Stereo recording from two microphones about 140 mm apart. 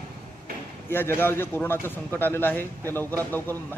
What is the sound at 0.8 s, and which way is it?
A man's voice, 15° left (ahead or behind).